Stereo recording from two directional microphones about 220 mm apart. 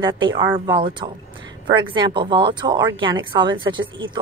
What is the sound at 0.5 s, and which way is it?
Speech, 20° right (ahead or behind).